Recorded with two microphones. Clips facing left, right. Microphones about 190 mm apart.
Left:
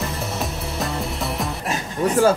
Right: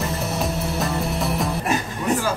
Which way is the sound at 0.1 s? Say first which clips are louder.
Right 2 dB; centre (ahead or behind).